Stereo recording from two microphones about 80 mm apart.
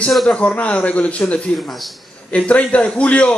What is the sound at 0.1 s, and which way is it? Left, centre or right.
Speech, centre.